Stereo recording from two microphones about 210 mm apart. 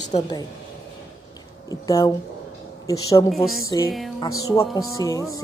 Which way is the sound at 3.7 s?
20° left (ahead or behind).